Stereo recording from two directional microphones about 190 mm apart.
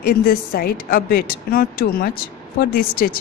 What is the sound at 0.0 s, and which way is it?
A woman's voice, 50° left (ahead or behind).